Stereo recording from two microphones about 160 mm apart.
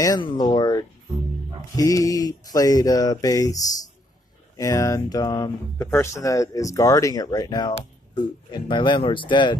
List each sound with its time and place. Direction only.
0.0 s speech: 25° left (ahead or behind)